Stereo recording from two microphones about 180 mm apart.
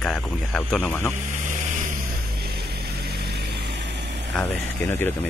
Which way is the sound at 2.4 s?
60° right (ahead or behind).